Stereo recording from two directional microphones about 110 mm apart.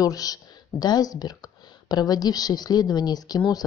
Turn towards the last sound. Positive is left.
turn(degrees=35)  # may be behind; listen again after turning